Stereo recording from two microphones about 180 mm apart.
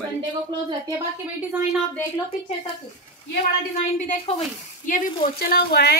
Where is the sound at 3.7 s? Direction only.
40° left (ahead or behind); by 5.9 s 65° left (ahead or behind).